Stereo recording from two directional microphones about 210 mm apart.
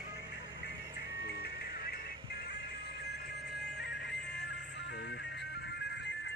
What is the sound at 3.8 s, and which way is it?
Music, 55° left (ahead or behind).